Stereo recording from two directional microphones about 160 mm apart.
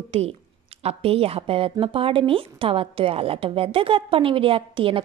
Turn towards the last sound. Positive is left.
turn(degrees=-35)  # may be behind; listen again after turning